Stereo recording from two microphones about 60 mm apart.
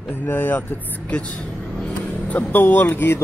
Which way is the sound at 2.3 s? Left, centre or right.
Left.